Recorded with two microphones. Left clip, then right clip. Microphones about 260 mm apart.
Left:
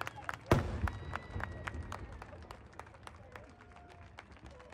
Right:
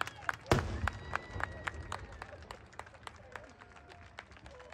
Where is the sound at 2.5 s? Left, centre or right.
Right.